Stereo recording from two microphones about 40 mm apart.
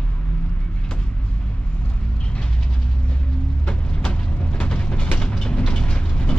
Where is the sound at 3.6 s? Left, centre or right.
Left.